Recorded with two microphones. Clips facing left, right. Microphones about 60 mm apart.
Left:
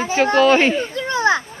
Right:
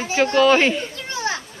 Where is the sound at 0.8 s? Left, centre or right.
Left.